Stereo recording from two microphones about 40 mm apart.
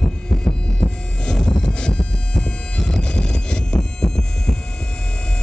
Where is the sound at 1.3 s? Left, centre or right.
Centre.